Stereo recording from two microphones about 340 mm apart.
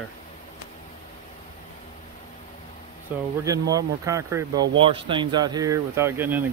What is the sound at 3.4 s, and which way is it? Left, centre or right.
Speech, centre.